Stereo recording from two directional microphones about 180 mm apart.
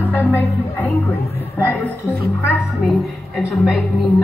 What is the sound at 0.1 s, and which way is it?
Speech, 10° left (ahead or behind).